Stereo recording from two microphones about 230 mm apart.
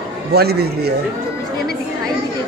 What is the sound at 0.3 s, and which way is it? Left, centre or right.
Speech, right.